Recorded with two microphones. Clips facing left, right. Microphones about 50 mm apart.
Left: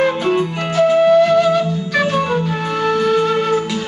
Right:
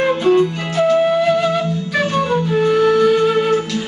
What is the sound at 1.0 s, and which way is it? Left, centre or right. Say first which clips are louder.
Flute: left 4 dB; centre.